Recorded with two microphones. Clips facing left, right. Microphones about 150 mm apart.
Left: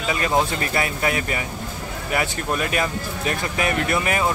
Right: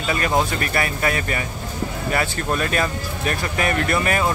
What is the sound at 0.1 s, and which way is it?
Speech, 20° left (ahead or behind).